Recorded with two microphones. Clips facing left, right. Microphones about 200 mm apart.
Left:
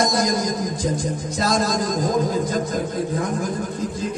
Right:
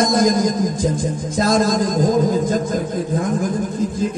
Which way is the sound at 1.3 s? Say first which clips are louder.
Right 5 dB; 50° right (ahead or behind).